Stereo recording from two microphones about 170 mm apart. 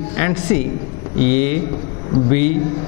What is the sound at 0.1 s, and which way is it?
A man's voice, 15° left (ahead or behind).